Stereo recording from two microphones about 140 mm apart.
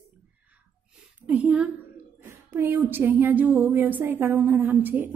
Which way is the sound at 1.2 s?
10° right (ahead or behind).